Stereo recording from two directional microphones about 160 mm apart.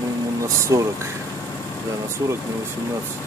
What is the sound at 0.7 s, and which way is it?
Speech, 20° right (ahead or behind).